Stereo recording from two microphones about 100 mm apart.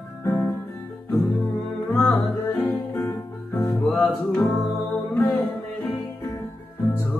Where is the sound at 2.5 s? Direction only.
20° left (ahead or behind).